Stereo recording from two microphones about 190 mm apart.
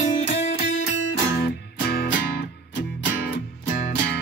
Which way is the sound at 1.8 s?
55° left (ahead or behind).